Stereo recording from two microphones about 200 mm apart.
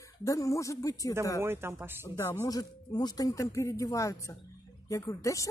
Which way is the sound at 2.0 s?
15° left (ahead or behind).